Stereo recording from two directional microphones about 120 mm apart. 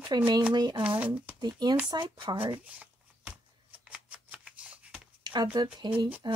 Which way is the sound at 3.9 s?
10° right (ahead or behind).